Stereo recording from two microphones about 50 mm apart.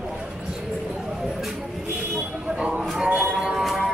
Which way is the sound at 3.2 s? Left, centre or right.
Centre.